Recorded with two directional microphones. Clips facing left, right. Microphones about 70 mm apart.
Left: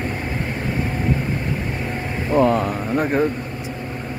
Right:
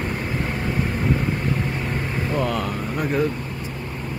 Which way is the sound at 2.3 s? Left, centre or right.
Left.